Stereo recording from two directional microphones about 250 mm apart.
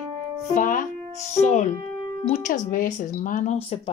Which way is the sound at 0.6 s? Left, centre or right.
Left.